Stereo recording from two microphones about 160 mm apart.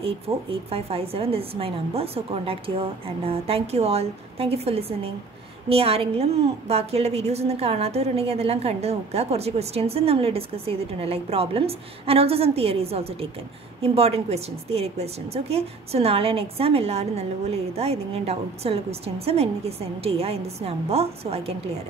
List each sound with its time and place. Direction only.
0.0 s a woman's voice: 35° right (ahead or behind)